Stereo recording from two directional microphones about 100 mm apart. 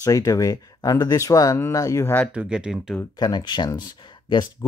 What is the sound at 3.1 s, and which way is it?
Speech, 45° left (ahead or behind).